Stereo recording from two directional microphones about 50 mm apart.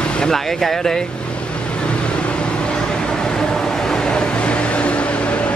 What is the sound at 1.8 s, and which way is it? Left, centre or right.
Vehicle, left.